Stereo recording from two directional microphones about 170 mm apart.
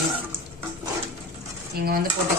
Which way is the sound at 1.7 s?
65° right (ahead or behind).